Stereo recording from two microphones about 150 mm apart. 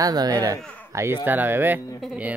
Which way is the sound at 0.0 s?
25° right (ahead or behind).